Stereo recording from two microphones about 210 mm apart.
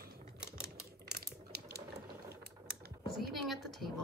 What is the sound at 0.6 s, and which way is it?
Typing, 50° right (ahead or behind).